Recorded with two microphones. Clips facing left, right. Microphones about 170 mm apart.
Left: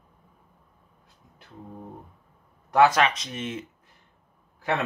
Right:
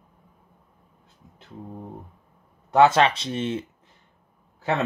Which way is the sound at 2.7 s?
25° right (ahead or behind).